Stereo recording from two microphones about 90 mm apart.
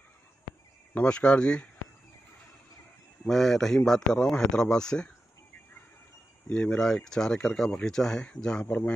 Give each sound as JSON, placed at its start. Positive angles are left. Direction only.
{"t": 0.9, "sound": "speech", "side_deg": 10}
{"t": 3.3, "sound": "speech", "side_deg": 5}
{"t": 6.5, "sound": "a man's voice", "side_deg": 15}